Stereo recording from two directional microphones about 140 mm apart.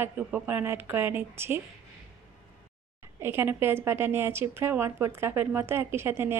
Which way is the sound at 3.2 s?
15° right (ahead or behind).